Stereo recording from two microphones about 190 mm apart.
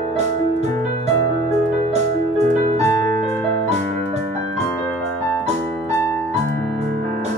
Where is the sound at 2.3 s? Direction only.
35° right (ahead or behind).